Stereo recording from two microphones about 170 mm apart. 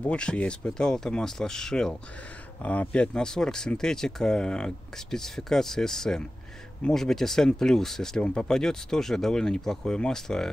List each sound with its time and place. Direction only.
0.0 s speech: 5° left (ahead or behind)